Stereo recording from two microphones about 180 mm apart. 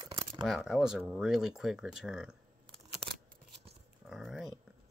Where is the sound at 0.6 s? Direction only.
5° right (ahead or behind).